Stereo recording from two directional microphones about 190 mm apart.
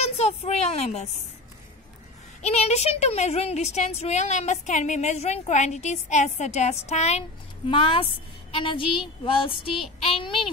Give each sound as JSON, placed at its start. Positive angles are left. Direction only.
{"t": 0.0, "sound": "a sound", "side_deg": 35}
{"t": 2.4, "sound": "speech", "side_deg": 35}
{"t": 9.2, "sound": "child singing", "side_deg": 25}